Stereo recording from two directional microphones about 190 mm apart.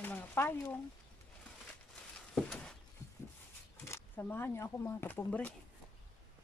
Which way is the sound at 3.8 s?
15° left (ahead or behind).